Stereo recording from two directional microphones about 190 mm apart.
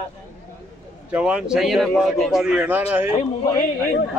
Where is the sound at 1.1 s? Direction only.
5° right (ahead or behind).